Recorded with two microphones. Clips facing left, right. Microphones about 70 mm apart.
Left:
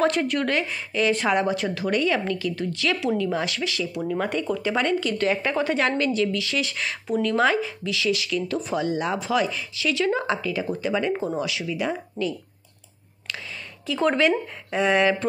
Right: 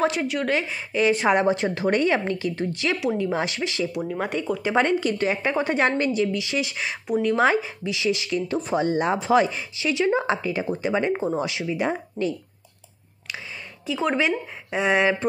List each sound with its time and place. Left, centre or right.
0.0 s a woman's voice: centre; by 4.0 s right
4.0 s a woman's voice: centre; by 12.4 s right
13.8 s speech: centre